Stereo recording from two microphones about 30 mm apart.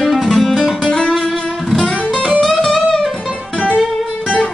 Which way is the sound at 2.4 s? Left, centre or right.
Centre.